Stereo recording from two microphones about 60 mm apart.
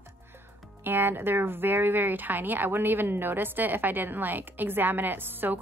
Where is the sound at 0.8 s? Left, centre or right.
Right.